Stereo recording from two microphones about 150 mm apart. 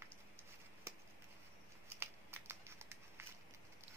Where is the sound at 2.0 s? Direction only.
15° right (ahead or behind).